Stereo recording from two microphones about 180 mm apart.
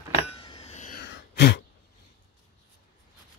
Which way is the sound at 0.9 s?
65° left (ahead or behind).